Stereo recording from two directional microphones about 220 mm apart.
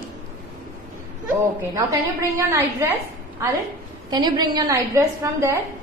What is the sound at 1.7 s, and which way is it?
A woman's voice, 15° right (ahead or behind).